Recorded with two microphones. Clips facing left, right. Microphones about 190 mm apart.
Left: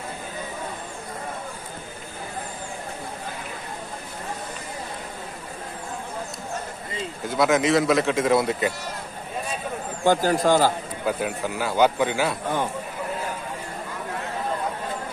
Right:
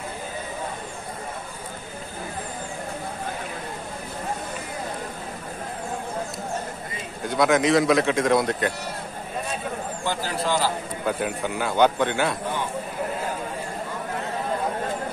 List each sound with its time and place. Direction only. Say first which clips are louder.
7.2 s speech: right 1 dB; centre (ahead or behind)
10.0 s a man's voice: left 8 dB; 45° left (ahead or behind)
11.1 s speech: even; centre (ahead or behind)